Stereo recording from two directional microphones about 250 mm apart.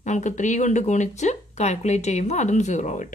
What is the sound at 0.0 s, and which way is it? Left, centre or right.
Speech, left.